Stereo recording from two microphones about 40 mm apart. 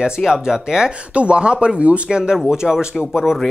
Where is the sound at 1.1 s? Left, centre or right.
Right.